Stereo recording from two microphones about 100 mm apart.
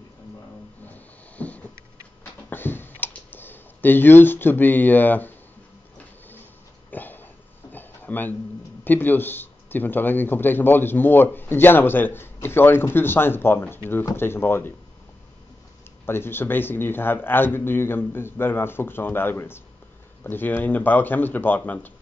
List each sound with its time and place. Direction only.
0.8 s a sound: 15° left (ahead or behind)
2.5 s clicking: 20° left (ahead or behind)
6.9 s dog: 20° left (ahead or behind)
7.7 s a sound: 20° left (ahead or behind)
8.8 s speech: 20° left (ahead or behind)
16.1 s speech: 20° left (ahead or behind)